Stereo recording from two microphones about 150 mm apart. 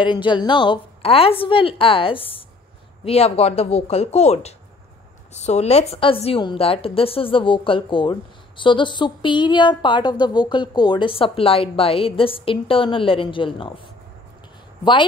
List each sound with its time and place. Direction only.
0.0 s a woman's voice: 30° left (ahead or behind)